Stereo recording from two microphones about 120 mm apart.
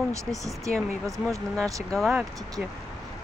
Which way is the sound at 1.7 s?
30° right (ahead or behind).